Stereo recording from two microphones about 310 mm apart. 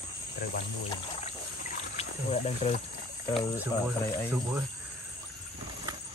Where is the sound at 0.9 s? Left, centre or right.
Centre.